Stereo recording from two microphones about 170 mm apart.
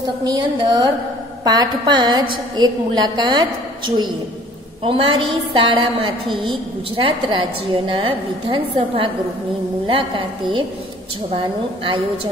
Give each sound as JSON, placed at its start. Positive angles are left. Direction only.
{"t": 0.0, "sound": "a woman's voice", "side_deg": -25}